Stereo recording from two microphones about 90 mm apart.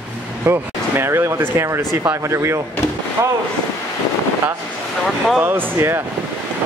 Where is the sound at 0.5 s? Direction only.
30° right (ahead or behind).